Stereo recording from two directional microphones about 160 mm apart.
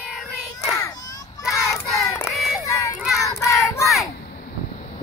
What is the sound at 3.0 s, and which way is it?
Child singing, centre (ahead or behind).